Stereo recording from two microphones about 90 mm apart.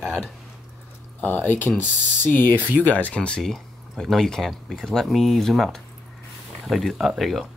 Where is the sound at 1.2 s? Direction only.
20° left (ahead or behind).